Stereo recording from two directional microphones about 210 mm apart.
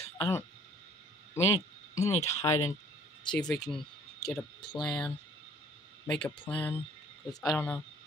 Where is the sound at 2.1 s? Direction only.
30° left (ahead or behind).